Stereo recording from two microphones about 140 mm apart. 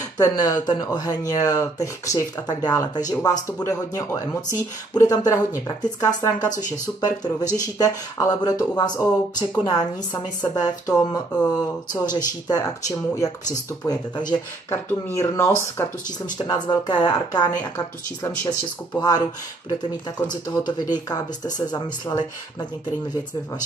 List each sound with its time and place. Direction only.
0.2 s speech: 25° left (ahead or behind)
10.4 s speech: 30° left (ahead or behind)
14.7 s speech: 15° left (ahead or behind)
16.3 s speech: 30° left (ahead or behind)